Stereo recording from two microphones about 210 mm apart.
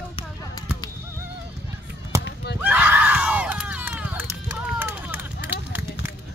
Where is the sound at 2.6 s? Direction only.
5° right (ahead or behind).